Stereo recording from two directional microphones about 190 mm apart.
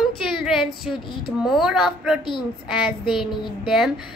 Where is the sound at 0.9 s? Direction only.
5° right (ahead or behind).